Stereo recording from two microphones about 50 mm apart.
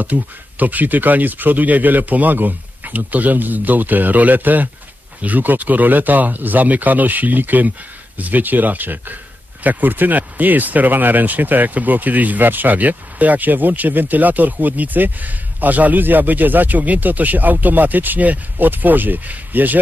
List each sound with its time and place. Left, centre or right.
0.0 s speech: right